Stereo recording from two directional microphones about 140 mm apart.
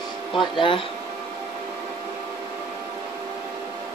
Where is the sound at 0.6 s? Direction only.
35° left (ahead or behind).